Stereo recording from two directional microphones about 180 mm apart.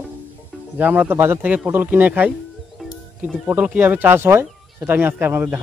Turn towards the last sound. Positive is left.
turn(degrees=-10)  # may be behind; listen again after turning